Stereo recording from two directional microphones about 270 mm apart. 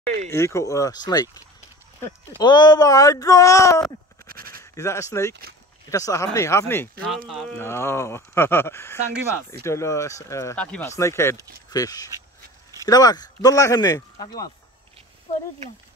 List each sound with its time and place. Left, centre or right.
0.3 s speech: centre
4.3 s sheep: right
4.7 s speech: centre